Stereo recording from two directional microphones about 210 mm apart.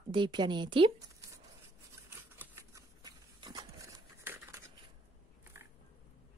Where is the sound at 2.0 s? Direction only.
10° right (ahead or behind).